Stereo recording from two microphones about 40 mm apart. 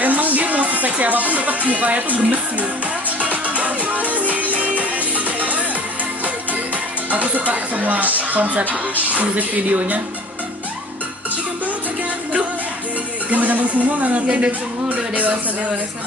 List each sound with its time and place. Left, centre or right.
0.0 s music: right
7.1 s speech: right
13.3 s speech: right
14.9 s a sound: right